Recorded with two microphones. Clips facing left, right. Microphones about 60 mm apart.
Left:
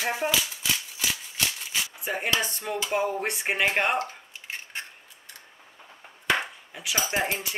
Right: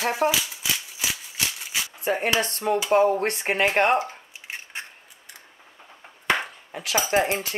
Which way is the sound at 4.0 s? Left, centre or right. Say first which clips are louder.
Right 1 dB; centre.